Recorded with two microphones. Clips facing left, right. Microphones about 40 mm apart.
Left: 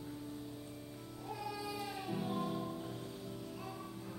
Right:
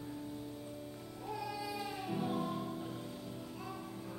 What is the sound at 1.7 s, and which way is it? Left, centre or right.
Music, right.